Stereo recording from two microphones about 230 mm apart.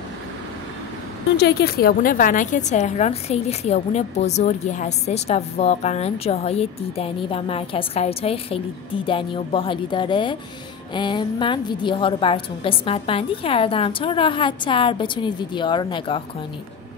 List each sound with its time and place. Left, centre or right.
1.4 s a woman's voice: left